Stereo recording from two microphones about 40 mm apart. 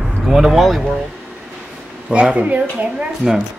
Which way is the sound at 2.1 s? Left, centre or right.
Right.